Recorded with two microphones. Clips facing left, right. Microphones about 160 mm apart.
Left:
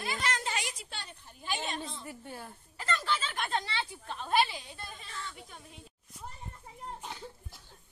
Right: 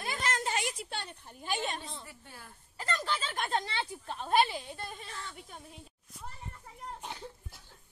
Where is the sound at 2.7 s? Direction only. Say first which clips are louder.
Left 1 dB; 35° right (ahead or behind).